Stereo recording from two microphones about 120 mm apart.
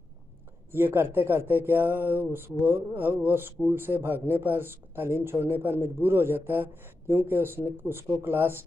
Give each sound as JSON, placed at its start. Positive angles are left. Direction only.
{"t": 0.7, "sound": "speech", "side_deg": -20}